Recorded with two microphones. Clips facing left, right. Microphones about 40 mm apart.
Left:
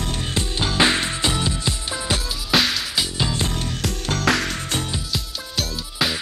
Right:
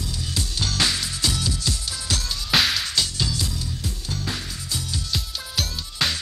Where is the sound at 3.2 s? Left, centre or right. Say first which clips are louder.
Left 4 dB; left.